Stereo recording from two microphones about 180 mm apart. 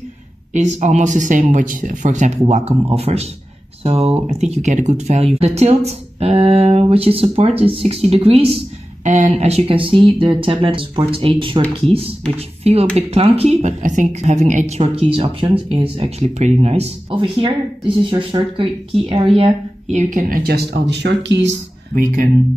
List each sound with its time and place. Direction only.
0.5 s speech: 40° right (ahead or behind)
14.8 s speech: 30° right (ahead or behind); by 21.5 s 85° right